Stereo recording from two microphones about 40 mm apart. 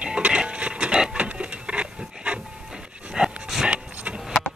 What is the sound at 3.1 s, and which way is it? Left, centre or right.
Dog, centre.